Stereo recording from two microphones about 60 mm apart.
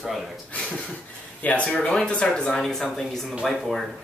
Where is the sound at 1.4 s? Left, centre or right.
Left.